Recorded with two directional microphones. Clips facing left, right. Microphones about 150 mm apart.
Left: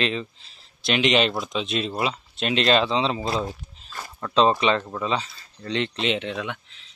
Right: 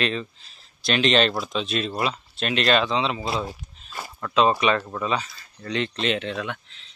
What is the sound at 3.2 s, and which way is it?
Speech, 5° right (ahead or behind).